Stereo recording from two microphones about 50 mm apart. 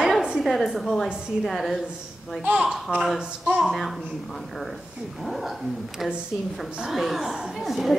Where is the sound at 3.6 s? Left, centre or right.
Centre.